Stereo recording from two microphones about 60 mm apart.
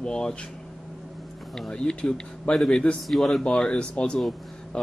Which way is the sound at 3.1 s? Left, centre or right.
Centre.